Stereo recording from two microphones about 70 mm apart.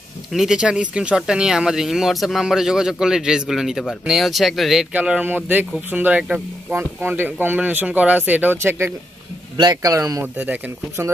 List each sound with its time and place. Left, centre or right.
0.5 s speech: centre
4.9 s speech: centre
5.2 s speech: right
9.6 s speech: right
10.2 s speech: right